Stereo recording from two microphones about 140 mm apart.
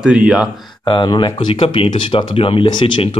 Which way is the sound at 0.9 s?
35° left (ahead or behind).